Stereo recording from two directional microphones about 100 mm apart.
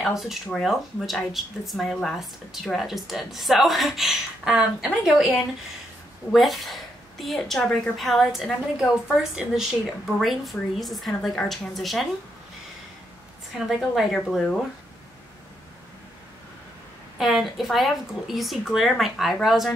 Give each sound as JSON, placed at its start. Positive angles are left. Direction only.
{"t": 0.0, "sound": "speech", "side_deg": 0}
{"t": 13.7, "sound": "speech", "side_deg": 0}
{"t": 17.2, "sound": "speech", "side_deg": 0}